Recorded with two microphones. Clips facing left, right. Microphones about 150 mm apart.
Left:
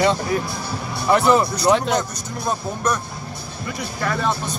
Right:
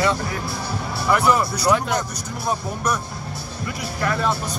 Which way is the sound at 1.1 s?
25° left (ahead or behind).